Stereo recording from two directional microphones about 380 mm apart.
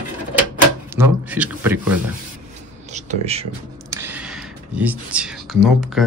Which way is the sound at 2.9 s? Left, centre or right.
Centre.